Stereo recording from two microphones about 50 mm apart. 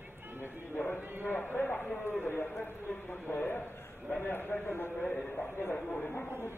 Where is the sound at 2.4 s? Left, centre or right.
Left.